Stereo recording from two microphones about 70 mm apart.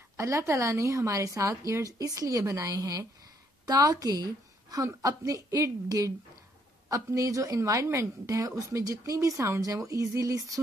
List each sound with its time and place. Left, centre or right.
0.2 s a woman's voice: right
2.7 s a woman's voice: right
4.8 s a woman's voice: right